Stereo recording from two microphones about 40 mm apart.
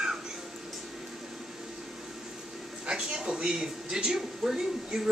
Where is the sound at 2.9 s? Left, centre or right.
Centre.